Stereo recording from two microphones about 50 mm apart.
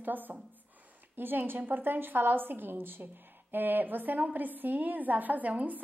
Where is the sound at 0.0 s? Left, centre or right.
Right.